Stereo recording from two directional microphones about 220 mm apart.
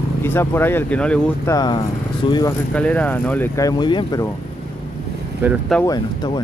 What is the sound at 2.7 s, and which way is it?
Speech, 5° left (ahead or behind).